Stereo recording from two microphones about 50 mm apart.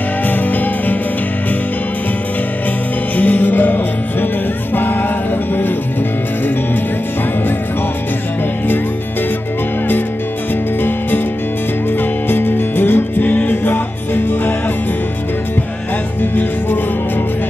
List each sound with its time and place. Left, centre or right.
0.3 s music: left
3.2 s music: left
12.3 s music: left